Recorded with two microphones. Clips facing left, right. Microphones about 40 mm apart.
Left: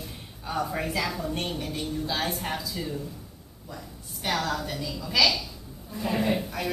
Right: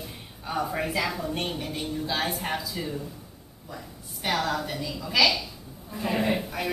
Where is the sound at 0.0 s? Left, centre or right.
Centre.